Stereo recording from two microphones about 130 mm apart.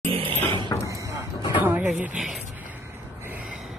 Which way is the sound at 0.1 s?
45° right (ahead or behind).